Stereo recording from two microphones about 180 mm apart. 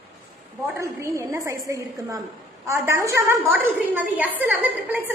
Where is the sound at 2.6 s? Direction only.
15° right (ahead or behind).